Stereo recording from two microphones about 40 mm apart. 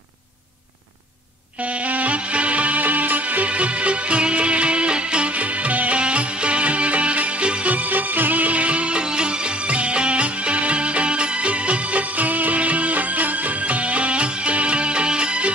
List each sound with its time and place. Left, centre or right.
1.6 s music: right
7.7 s music: right